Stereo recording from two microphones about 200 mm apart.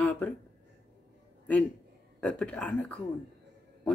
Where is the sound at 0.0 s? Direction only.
10° left (ahead or behind).